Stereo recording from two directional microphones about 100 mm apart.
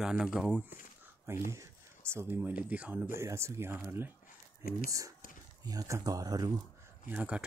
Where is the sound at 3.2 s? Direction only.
25° right (ahead or behind).